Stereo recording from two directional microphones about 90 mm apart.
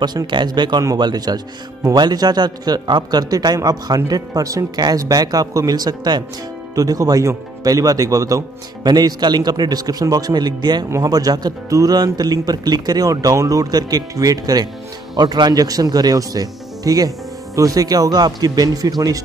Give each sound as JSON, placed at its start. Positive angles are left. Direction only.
{"t": 0.0, "sound": "speech", "side_deg": -55}
{"t": 8.8, "sound": "speech", "side_deg": -50}